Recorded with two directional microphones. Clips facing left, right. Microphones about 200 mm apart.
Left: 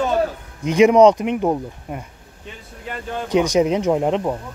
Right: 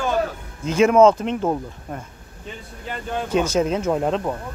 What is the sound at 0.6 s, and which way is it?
Speech, 15° left (ahead or behind).